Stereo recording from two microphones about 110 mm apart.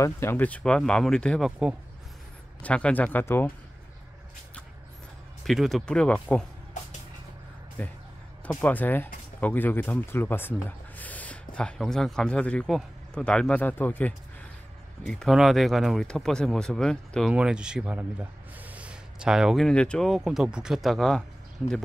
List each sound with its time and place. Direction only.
0.0 s speech: 20° left (ahead or behind)
2.6 s speech: 10° left (ahead or behind)
5.4 s speech: centre (ahead or behind)
7.8 s speech: 20° left (ahead or behind)
11.0 s a sound: 15° left (ahead or behind)
11.8 s speech: 5° left (ahead or behind)
17.3 s speech: 10° right (ahead or behind)